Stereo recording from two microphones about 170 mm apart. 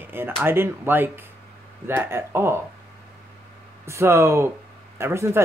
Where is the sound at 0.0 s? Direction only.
15° right (ahead or behind).